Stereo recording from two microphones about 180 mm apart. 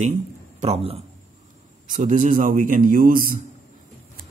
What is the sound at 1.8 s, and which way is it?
A man's voice, 45° right (ahead or behind).